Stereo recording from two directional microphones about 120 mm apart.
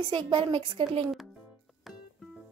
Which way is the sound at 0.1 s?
45° right (ahead or behind).